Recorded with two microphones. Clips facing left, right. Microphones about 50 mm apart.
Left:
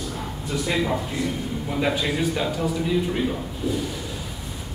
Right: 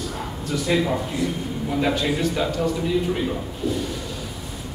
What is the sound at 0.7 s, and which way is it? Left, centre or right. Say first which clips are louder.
A man's voice: right 3 dB; centre.